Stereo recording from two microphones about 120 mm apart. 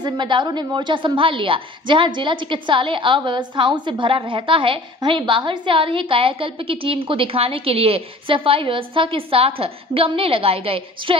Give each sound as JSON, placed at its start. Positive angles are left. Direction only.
{"t": 0.0, "sound": "a woman's voice", "side_deg": -40}